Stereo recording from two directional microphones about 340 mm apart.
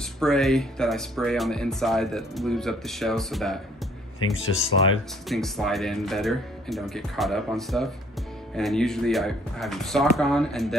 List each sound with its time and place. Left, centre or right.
0.2 s speech: centre
4.2 s speech: left
5.3 s speech: centre